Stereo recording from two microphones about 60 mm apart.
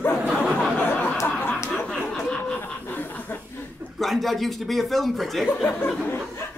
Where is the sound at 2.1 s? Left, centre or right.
Centre.